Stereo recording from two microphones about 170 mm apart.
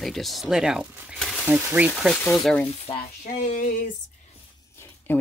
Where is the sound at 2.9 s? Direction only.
30° left (ahead or behind).